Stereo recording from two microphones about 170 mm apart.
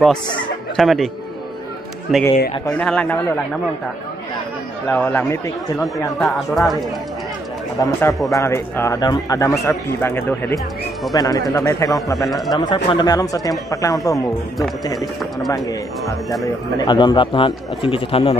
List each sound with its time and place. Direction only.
0.7 s speech: centre (ahead or behind)
4.8 s speech: 10° left (ahead or behind)
6.1 s speech: centre (ahead or behind)
7.8 s speech: 20° left (ahead or behind)
12.3 s speech: centre (ahead or behind)
12.5 s speech: 25° left (ahead or behind)
15.5 s speech: 20° left (ahead or behind)